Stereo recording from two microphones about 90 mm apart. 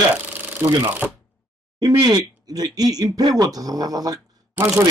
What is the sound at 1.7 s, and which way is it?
Speech, 50° right (ahead or behind).